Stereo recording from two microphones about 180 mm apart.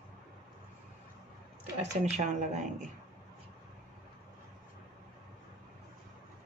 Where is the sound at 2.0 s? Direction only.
40° right (ahead or behind).